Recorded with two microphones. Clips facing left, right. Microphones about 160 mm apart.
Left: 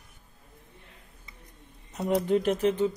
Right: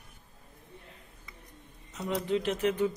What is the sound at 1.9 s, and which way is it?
Speech, 45° left (ahead or behind).